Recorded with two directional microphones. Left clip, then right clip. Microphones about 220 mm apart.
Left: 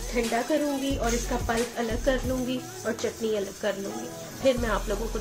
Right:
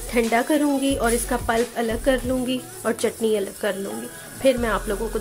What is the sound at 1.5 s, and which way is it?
Speech, 25° right (ahead or behind).